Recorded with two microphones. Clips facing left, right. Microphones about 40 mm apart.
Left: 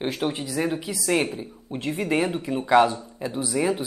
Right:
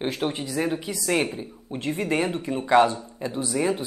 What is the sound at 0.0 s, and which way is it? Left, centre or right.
Speech, centre.